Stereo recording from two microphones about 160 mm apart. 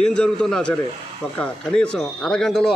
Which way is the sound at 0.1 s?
5° left (ahead or behind).